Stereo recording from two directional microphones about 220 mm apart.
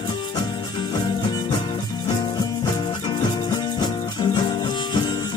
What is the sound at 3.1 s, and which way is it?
Music, 20° left (ahead or behind).